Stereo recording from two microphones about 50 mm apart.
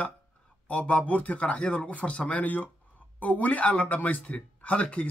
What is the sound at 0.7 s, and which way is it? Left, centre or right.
Speech, left.